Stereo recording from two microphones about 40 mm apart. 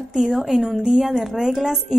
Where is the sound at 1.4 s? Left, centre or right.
Centre.